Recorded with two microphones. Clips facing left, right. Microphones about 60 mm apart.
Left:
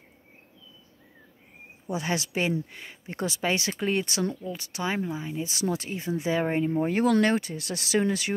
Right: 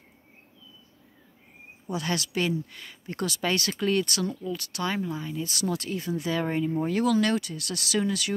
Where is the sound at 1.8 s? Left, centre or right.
Left.